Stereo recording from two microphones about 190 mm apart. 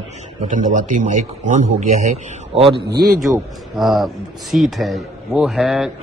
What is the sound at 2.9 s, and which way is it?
Speech, 55° right (ahead or behind).